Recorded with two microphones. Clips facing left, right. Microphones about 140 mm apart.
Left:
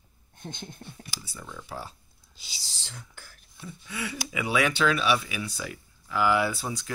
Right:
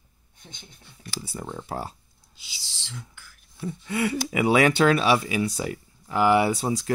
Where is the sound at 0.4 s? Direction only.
55° left (ahead or behind).